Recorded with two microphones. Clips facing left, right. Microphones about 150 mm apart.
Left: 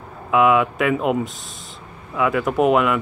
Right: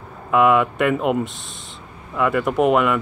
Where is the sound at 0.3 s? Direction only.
Centre (ahead or behind).